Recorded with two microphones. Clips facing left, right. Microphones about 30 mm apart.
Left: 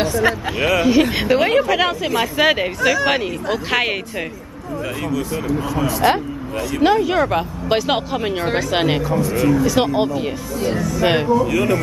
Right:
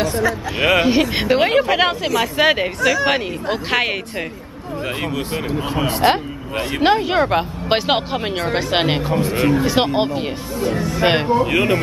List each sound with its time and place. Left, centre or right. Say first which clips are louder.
0.6 s a woman's voice: right 1 dB; right
2.3 s a woman's voice: even; centre
5.1 s speech: left 1 dB; right